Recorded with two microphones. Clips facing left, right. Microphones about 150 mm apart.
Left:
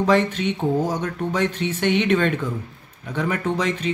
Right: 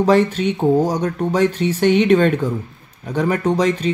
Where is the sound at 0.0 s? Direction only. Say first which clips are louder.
Right 4 dB; 40° right (ahead or behind).